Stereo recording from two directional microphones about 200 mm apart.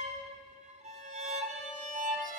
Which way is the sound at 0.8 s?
35° right (ahead or behind).